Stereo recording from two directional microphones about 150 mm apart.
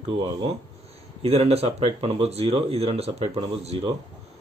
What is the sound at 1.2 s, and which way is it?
Speech, 40° right (ahead or behind).